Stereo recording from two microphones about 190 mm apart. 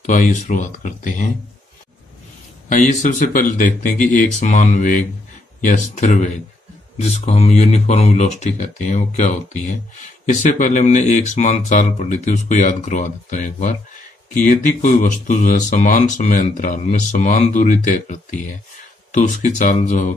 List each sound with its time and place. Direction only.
0.0 s speech: 40° left (ahead or behind)
2.7 s speech: 40° left (ahead or behind)